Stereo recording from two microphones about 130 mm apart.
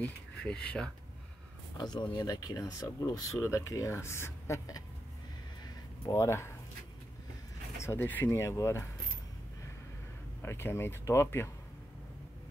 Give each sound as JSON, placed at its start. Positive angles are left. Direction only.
{"t": 0.0, "sound": "speech", "side_deg": 10}
{"t": 1.8, "sound": "speech", "side_deg": 30}
{"t": 6.0, "sound": "speech", "side_deg": 25}
{"t": 7.8, "sound": "speech", "side_deg": 15}
{"t": 10.4, "sound": "speech", "side_deg": 20}